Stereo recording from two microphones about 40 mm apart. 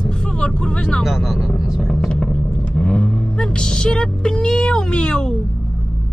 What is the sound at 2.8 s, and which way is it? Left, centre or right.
Vehicle, left.